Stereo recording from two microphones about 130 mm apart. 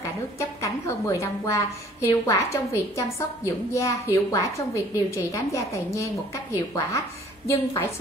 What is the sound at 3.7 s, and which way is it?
A woman's voice, 25° left (ahead or behind).